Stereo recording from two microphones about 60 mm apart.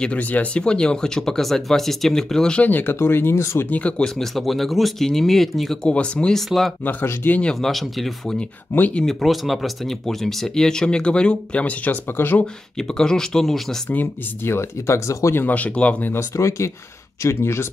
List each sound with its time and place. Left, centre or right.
0.2 s speech: left
0.6 s speech: centre
2.6 s speech: left
4.0 s speech: centre
5.9 s speech: centre
6.8 s speech: left
7.4 s speech: centre
8.7 s speech: left
9.0 s speech: centre; by 12.4 s left
12.7 s speech: centre
13.8 s speech: left
15.3 s speech: left
16.3 s speech: left